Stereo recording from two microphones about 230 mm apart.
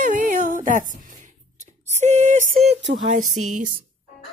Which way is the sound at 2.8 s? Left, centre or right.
Right.